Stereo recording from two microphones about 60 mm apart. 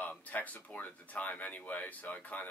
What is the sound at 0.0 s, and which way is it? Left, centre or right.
Speech, left.